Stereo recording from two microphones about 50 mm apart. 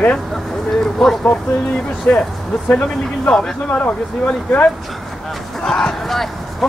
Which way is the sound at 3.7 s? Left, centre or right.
Left.